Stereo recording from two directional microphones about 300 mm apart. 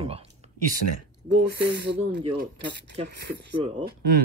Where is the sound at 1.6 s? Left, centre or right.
Right.